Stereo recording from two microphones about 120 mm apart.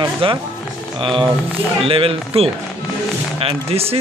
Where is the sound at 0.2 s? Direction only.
50° right (ahead or behind).